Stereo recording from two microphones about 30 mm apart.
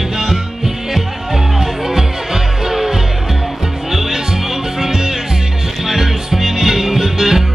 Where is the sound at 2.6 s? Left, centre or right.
Centre.